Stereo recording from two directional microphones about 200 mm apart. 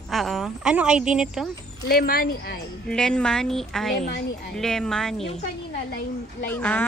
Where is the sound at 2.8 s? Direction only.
5° left (ahead or behind).